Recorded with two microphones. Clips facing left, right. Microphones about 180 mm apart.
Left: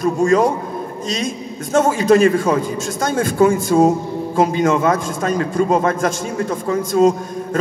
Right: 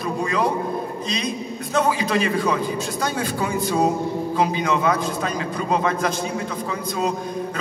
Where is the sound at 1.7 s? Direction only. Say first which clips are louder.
Left 8 dB; 45° left (ahead or behind).